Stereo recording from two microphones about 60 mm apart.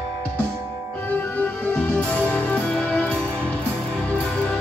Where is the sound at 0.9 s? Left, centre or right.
Left.